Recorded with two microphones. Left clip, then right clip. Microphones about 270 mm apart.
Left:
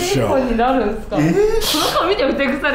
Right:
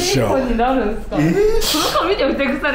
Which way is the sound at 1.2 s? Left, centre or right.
Centre.